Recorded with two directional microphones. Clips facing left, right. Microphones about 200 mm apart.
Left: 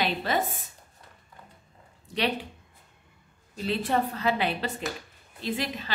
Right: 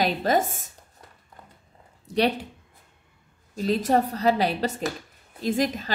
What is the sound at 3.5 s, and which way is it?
A woman's voice, 40° right (ahead or behind).